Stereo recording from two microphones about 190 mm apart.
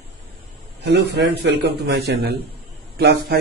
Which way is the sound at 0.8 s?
60° right (ahead or behind).